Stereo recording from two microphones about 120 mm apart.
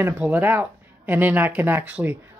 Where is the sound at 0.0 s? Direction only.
15° right (ahead or behind).